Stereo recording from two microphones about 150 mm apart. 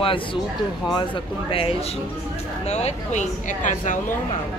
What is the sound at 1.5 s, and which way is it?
Speech, 40° left (ahead or behind).